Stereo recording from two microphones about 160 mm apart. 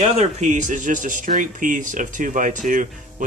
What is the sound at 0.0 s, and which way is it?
Speech, 45° right (ahead or behind).